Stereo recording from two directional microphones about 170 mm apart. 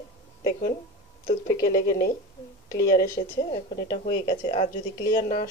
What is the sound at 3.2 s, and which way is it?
A woman's voice, 40° left (ahead or behind).